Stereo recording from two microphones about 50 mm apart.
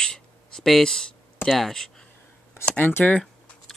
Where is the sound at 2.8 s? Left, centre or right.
Left.